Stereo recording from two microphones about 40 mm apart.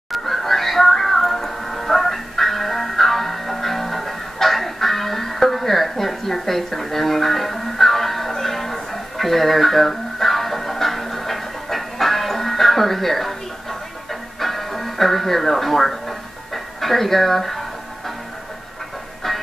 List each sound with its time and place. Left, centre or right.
0.1 s music: centre
19.2 s music: centre